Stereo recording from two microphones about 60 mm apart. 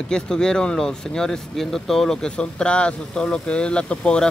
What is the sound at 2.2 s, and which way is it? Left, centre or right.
Speech, centre.